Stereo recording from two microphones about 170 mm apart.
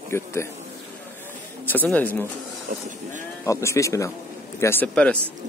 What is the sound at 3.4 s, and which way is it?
A man's voice, 20° left (ahead or behind).